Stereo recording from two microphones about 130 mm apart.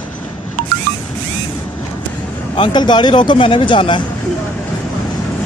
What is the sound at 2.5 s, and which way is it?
Speech, 35° left (ahead or behind).